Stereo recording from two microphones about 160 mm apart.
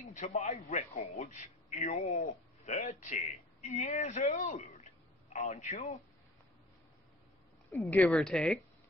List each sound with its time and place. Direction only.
0.0 s a man's voice: 50° left (ahead or behind)
7.8 s a woman's voice: 10° left (ahead or behind)